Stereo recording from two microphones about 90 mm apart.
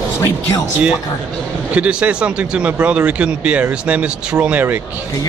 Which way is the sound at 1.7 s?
10° right (ahead or behind).